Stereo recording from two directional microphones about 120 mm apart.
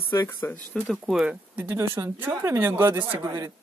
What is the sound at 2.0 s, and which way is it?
A woman's voice, 25° right (ahead or behind).